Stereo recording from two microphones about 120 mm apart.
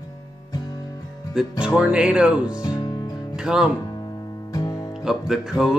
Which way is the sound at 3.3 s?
5° right (ahead or behind).